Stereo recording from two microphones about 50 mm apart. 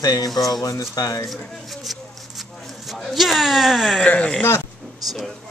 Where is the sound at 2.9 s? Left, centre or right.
Centre.